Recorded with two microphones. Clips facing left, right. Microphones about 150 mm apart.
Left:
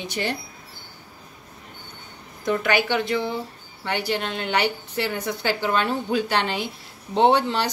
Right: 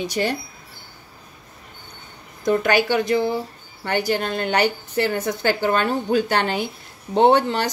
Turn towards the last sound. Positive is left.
turn(degrees=-45)  # may be behind; listen again after turning